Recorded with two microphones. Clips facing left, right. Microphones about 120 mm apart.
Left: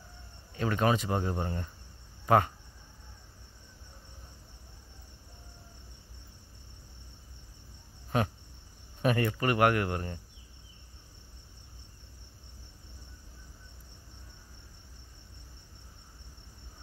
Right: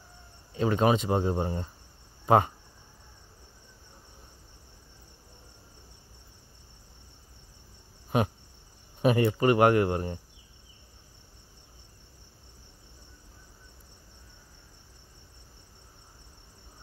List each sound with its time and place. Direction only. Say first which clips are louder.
0.6 s speech: right 4 dB; 25° right (ahead or behind)
8.1 s speech: right 3 dB; 15° right (ahead or behind)